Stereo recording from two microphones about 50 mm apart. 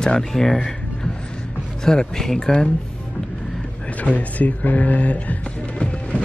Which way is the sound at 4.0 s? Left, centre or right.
Left.